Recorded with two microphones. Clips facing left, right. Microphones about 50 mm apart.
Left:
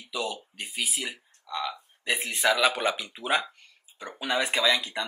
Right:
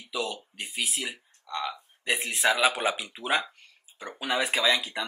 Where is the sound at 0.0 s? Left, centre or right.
Centre.